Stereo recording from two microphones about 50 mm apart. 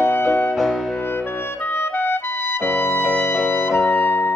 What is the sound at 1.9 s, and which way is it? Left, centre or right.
Clarinet, left.